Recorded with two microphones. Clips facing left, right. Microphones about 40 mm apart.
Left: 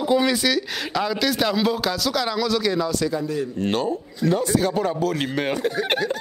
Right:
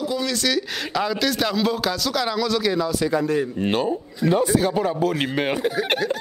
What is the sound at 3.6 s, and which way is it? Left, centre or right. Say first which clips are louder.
A man's voice: right 1 dB; centre.